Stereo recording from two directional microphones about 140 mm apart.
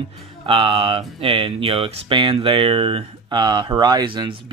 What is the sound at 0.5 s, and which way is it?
Speech, 40° right (ahead or behind).